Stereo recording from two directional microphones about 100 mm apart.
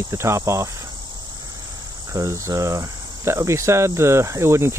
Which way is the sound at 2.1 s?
30° right (ahead or behind).